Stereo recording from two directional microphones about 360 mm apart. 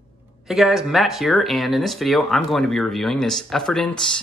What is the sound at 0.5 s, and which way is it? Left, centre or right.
Speech, centre.